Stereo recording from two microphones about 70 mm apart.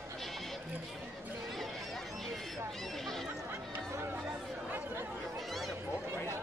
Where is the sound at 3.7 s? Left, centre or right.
Right.